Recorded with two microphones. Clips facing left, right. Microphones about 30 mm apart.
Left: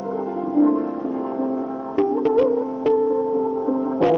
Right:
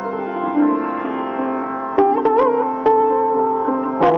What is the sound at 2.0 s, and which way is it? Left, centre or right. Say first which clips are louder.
Sitar: right 4 dB; right.